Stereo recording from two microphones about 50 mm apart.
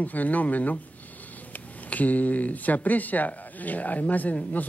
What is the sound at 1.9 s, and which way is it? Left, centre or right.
Speech, left.